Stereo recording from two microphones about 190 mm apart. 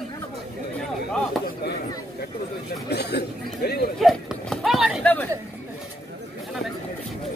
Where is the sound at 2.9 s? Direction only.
60° left (ahead or behind).